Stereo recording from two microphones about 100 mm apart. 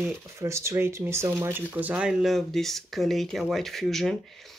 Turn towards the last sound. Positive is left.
turn(degrees=0)  # may be behind; listen again after turning